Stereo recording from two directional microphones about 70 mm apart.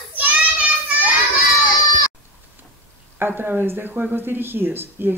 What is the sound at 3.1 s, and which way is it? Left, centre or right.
Speech, right.